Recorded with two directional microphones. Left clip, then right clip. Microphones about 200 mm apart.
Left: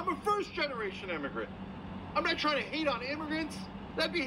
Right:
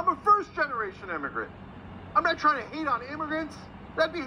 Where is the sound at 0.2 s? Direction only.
10° right (ahead or behind).